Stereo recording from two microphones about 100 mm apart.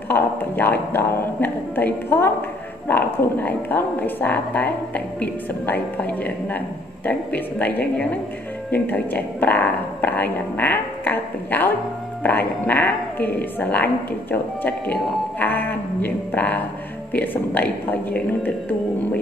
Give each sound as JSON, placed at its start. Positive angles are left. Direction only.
{"t": 0.1, "sound": "speech", "side_deg": 20}